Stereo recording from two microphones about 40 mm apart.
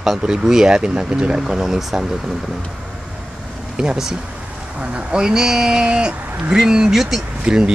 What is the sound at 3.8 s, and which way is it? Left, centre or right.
Speech, centre.